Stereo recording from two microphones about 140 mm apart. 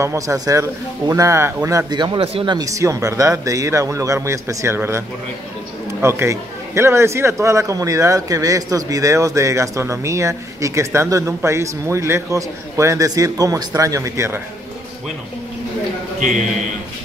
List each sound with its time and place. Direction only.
0.0 s a man's voice: 20° right (ahead or behind)